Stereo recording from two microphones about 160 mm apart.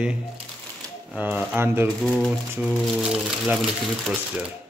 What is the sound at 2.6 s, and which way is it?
Speech, centre (ahead or behind).